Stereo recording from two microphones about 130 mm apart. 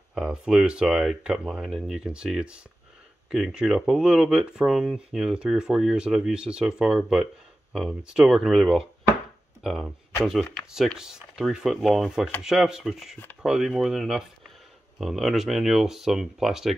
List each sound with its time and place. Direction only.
0.1 s speech: 5° right (ahead or behind)